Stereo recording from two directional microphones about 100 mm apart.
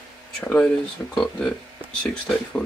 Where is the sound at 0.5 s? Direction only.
10° left (ahead or behind).